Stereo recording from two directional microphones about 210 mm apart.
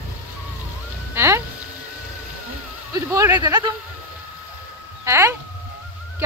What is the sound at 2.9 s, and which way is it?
Speech, 15° right (ahead or behind).